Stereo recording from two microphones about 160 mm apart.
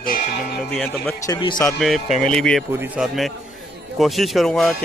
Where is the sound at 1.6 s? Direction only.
Centre (ahead or behind).